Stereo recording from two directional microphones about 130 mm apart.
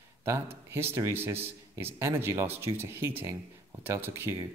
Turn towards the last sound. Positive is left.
turn(degrees=-15)  # may be behind; listen again after turning